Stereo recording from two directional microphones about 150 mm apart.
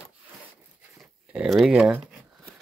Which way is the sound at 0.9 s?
5° right (ahead or behind).